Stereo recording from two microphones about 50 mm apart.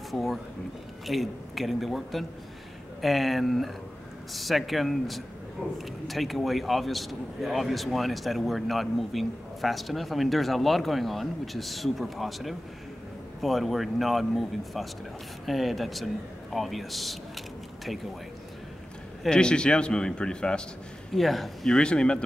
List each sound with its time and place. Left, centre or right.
0.1 s a man's voice: centre
19.2 s a man's voice: centre
21.1 s a man's voice: centre
21.7 s speech: centre